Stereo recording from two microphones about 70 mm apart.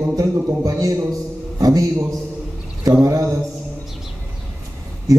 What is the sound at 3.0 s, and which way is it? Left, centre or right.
Speech, right.